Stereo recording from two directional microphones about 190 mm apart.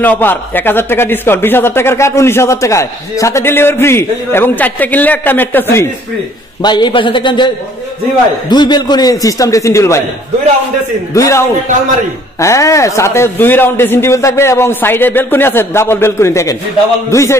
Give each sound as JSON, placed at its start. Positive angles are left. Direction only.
{"t": 0.0, "sound": "a man's voice", "side_deg": 10}
{"t": 6.6, "sound": "a man's voice", "side_deg": 25}
{"t": 11.1, "sound": "a man's voice", "side_deg": 15}